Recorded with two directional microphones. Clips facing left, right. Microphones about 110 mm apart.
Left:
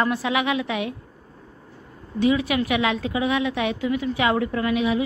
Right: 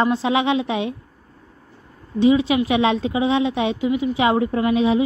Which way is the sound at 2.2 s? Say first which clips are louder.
Right 5 dB; 25° right (ahead or behind).